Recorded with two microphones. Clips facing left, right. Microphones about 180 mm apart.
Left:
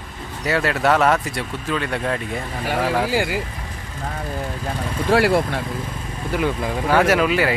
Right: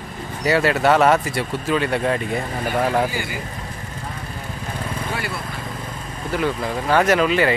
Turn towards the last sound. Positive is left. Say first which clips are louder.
# even
turn(degrees=5)  # may be behind; listen again after turning